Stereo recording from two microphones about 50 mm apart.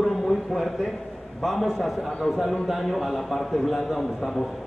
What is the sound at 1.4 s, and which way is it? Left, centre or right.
A man's voice, centre.